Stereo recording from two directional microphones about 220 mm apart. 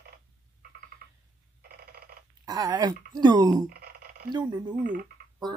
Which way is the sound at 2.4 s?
15° right (ahead or behind).